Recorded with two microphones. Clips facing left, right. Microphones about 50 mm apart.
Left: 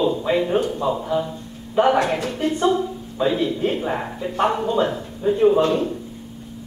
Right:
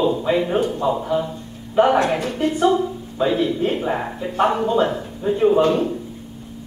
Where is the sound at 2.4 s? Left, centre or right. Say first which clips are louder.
Right 2 dB; centre.